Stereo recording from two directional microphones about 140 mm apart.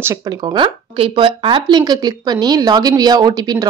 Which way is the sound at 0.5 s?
35° right (ahead or behind).